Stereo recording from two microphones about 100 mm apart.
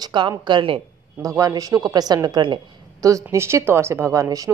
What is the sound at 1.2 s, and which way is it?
A woman's voice, 35° right (ahead or behind).